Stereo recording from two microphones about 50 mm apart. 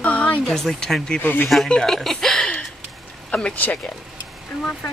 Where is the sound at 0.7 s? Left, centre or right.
Centre.